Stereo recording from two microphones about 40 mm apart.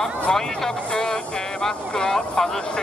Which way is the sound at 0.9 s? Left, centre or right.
Centre.